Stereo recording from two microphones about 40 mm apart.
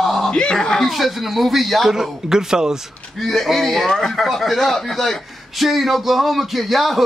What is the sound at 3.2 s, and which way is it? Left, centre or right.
A man's voice, centre.